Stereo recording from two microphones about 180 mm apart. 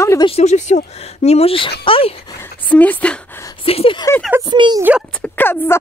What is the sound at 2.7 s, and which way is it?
Speech, 10° left (ahead or behind).